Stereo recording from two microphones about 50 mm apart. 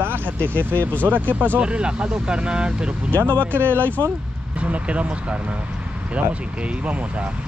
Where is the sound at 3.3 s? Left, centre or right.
Left.